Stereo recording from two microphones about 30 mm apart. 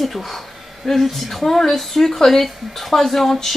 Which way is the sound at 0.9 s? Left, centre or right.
Centre.